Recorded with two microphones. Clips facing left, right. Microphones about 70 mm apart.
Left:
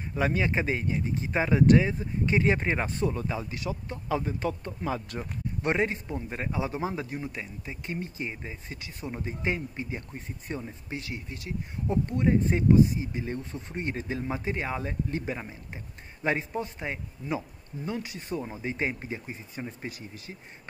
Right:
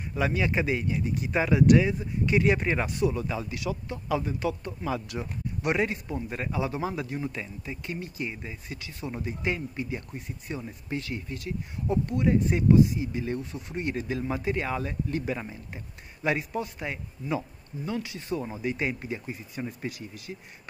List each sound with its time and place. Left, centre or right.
0.1 s speech: left
10.9 s speech: left